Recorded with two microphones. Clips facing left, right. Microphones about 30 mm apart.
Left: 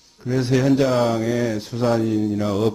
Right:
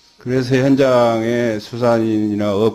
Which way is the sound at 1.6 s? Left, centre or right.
Centre.